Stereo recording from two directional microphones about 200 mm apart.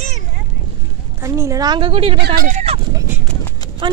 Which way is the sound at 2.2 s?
45° right (ahead or behind).